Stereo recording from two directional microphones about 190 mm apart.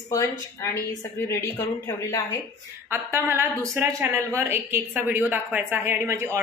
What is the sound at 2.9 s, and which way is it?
A woman's voice, 10° right (ahead or behind).